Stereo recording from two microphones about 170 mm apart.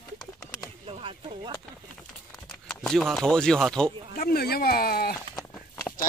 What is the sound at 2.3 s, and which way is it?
Speech, 5° left (ahead or behind).